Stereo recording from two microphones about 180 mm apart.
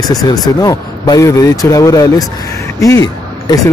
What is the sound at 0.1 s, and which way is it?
Speech, 20° left (ahead or behind).